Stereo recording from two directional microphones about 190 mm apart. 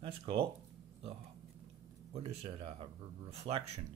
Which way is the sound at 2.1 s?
35° right (ahead or behind).